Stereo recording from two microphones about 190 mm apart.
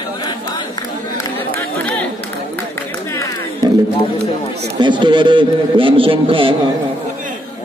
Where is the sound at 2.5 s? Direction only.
15° left (ahead or behind).